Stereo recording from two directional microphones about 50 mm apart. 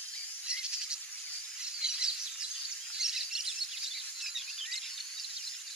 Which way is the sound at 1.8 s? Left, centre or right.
Centre.